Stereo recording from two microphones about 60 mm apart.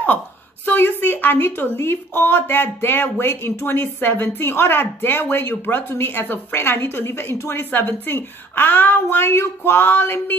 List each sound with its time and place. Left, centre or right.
0.7 s speech: left